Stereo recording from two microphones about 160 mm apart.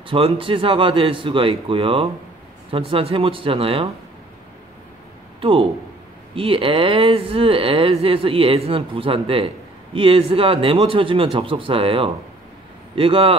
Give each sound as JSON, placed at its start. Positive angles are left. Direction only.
{"t": 0.0, "sound": "speech", "side_deg": -35}
{"t": 5.4, "sound": "speech", "side_deg": -35}